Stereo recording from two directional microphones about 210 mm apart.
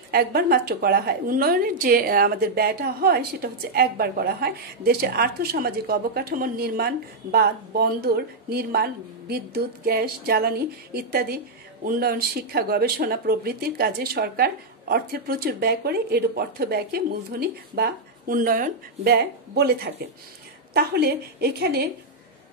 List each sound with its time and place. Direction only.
0.1 s speech: 45° right (ahead or behind)